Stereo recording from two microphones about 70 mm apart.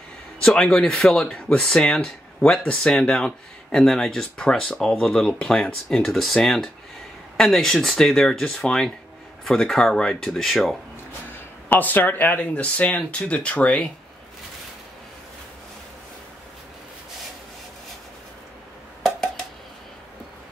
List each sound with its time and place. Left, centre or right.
0.4 s speech: centre
11.7 s speech: left